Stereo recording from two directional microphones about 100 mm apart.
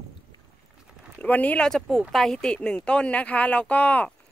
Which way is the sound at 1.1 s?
15° left (ahead or behind).